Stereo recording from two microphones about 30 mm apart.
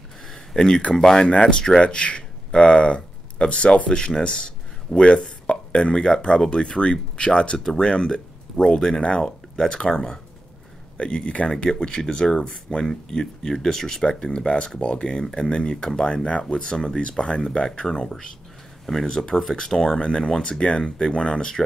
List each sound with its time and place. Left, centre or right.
0.3 s a sound: centre
1.1 s speech: left
7.7 s speech: left
9.8 s speech: left
11.6 s speech: left
14.0 s speech: left
15.8 s speech: centre
20.6 s speech: left